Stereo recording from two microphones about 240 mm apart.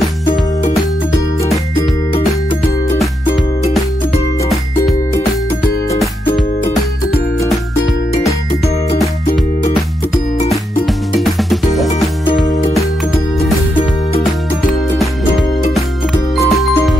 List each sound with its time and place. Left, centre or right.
11.1 s music: centre
14.7 s music: centre
16.4 s music: centre